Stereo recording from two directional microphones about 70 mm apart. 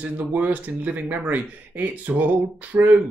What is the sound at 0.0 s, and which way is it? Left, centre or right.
Speech, right.